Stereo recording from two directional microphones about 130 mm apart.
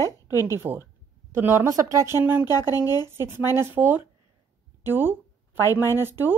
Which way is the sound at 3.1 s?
15° right (ahead or behind).